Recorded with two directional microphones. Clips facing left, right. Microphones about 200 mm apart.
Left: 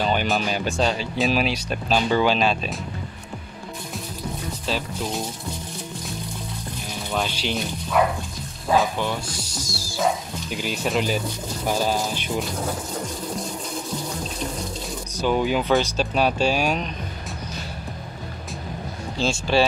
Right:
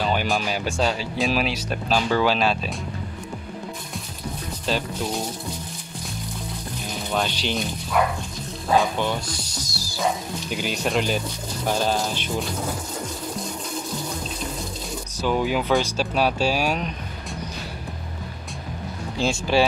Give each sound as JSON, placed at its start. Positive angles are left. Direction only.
{"t": 0.0, "sound": "speech", "side_deg": -5}
{"t": 2.0, "sound": "speech", "side_deg": 20}
{"t": 2.2, "sound": "speech", "side_deg": -5}
{"t": 4.6, "sound": "speech", "side_deg": 0}
{"t": 7.2, "sound": "speech", "side_deg": 5}
{"t": 8.7, "sound": "speech", "side_deg": 5}
{"t": 15.2, "sound": "speech", "side_deg": -5}
{"t": 19.1, "sound": "speech", "side_deg": -15}